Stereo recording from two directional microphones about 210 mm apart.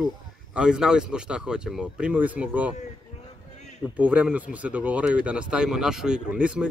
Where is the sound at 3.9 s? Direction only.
5° right (ahead or behind).